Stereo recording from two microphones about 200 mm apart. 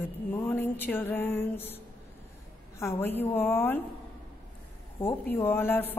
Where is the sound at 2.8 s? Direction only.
10° left (ahead or behind).